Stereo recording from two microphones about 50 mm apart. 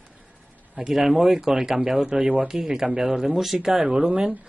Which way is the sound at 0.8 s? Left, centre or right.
Centre.